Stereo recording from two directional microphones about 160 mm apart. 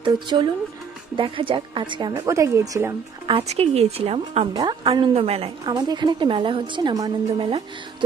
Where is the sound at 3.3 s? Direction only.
40° right (ahead or behind).